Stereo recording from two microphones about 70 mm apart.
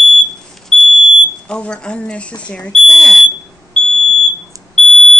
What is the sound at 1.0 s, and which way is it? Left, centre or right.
Speech, centre.